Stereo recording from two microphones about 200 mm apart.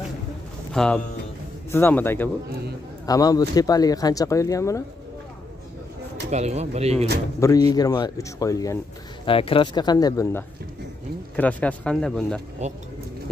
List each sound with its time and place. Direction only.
0.7 s speech: 5° left (ahead or behind)
6.3 s speech: 35° right (ahead or behind)
7.3 s speech: 15° left (ahead or behind)
9.2 s speech: 25° left (ahead or behind)
11.3 s speech: 5° left (ahead or behind)
12.6 s speech: 35° right (ahead or behind)